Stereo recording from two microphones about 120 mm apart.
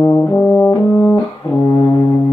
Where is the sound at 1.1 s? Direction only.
35° left (ahead or behind).